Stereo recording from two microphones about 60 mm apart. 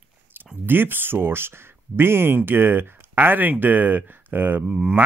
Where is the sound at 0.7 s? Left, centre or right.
Right.